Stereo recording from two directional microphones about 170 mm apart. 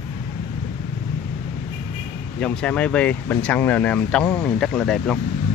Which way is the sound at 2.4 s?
5° left (ahead or behind).